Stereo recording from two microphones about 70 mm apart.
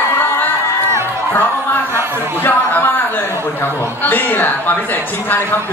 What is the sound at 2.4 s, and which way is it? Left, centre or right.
A man's voice, left.